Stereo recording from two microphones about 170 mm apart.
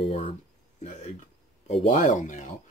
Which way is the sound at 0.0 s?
35° left (ahead or behind).